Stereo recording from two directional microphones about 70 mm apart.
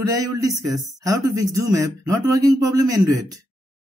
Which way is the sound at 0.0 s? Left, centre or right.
Right.